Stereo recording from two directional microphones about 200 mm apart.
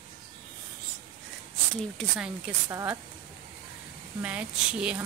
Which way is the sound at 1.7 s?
Centre (ahead or behind).